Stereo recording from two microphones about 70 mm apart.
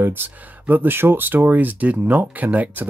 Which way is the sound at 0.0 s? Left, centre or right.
Right.